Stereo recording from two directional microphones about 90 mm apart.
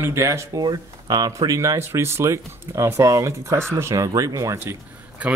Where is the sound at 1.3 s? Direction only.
35° right (ahead or behind).